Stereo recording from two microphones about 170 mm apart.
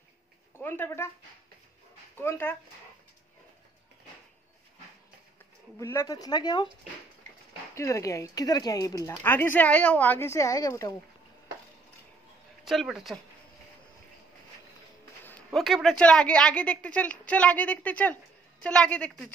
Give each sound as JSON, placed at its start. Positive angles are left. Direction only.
{"t": 0.6, "sound": "speech", "side_deg": 10}
{"t": 2.1, "sound": "speech", "side_deg": 15}
{"t": 5.8, "sound": "speech", "side_deg": 15}
{"t": 7.7, "sound": "speech", "side_deg": 15}
{"t": 12.6, "sound": "a woman's voice", "side_deg": 0}
{"t": 15.2, "sound": "a woman's voice", "side_deg": 5}